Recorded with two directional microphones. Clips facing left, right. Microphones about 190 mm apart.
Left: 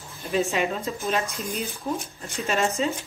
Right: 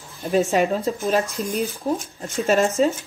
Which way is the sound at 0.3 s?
35° right (ahead or behind).